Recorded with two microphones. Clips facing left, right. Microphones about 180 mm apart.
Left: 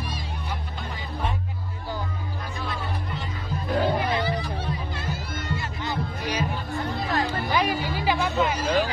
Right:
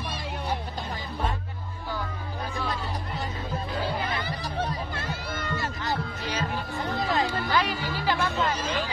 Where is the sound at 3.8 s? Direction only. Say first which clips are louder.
Left 6 dB; 20° left (ahead or behind).